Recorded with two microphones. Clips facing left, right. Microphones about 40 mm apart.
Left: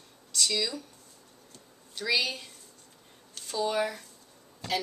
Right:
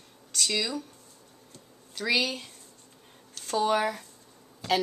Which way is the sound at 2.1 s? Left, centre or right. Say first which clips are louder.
Right 2 dB; right.